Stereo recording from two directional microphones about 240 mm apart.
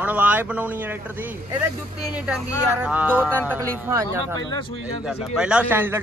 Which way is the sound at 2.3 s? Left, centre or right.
Centre.